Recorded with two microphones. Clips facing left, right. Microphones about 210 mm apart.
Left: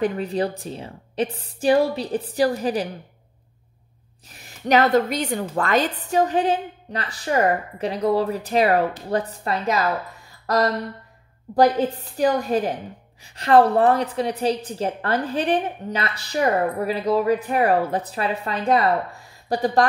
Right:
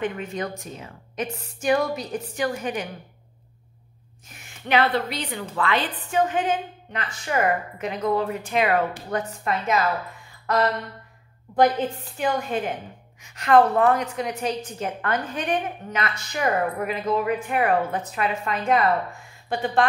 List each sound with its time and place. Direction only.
0.0 s a woman's voice: 35° left (ahead or behind)
4.3 s a woman's voice: 35° left (ahead or behind)
10.4 s a sound: 35° left (ahead or behind)
11.5 s a woman's voice: 35° left (ahead or behind)